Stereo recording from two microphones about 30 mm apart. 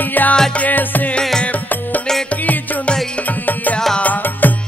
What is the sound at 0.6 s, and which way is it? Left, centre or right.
Music, left.